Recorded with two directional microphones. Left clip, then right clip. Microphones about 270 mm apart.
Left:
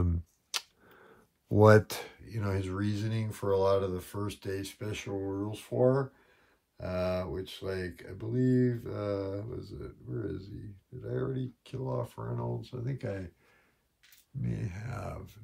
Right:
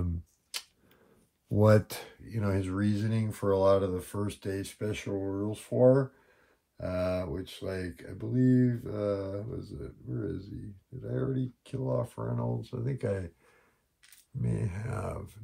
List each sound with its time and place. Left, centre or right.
0.0 s a sound: left
1.5 s speech: left; by 13.2 s centre
14.4 s speech: centre